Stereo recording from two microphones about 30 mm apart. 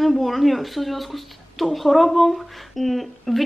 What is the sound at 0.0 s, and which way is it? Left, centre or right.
A man's voice, centre.